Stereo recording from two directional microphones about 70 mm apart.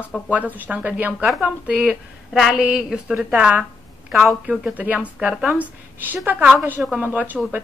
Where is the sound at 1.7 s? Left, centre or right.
Centre.